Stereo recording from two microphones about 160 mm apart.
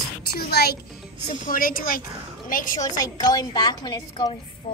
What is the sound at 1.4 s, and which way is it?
A child's voice, 60° left (ahead or behind).